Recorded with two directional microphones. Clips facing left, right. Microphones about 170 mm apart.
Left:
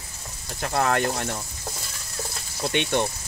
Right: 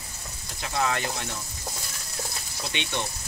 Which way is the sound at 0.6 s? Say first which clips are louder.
Left 5 dB; 55° left (ahead or behind).